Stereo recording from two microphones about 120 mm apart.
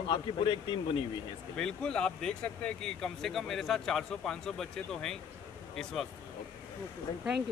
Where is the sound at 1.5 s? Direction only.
5° left (ahead or behind).